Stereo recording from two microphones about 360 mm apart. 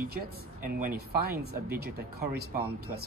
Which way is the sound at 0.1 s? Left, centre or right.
Right.